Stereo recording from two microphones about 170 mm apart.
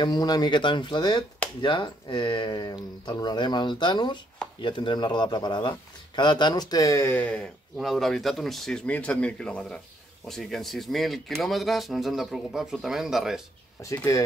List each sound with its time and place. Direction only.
0.0 s speech: 25° left (ahead or behind); by 13.4 s centre (ahead or behind)
13.8 s speech: 20° left (ahead or behind)